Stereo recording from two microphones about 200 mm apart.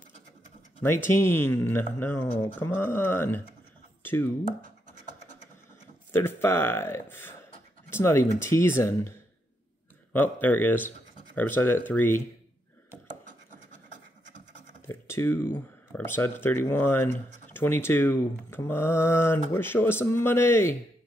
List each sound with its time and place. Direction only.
0.8 s speech: 10° left (ahead or behind)
4.0 s a sound: 10° left (ahead or behind)
4.6 s a sound: 40° right (ahead or behind)
6.1 s speech: 10° left (ahead or behind)
10.1 s speech: 10° left (ahead or behind)
14.9 s speech: 10° left (ahead or behind)